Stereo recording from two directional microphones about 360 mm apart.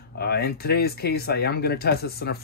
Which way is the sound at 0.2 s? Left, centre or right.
Left.